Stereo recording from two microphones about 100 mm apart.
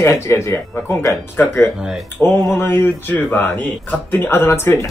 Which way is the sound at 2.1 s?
25° left (ahead or behind).